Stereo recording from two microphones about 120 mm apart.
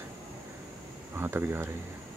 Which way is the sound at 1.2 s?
20° right (ahead or behind).